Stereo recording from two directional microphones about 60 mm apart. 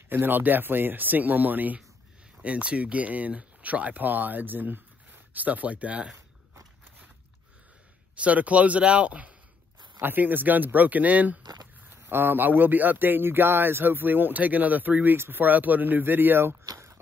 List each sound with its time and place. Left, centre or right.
0.1 s speech: right
8.2 s speech: right
11.9 s speech: right